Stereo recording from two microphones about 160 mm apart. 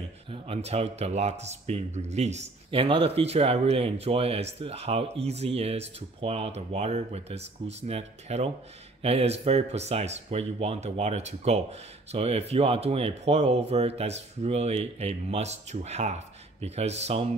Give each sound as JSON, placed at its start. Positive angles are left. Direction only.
{"t": 0.3, "sound": "speech", "side_deg": -40}